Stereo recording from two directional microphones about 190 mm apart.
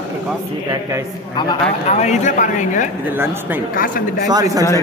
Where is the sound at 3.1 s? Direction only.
10° right (ahead or behind).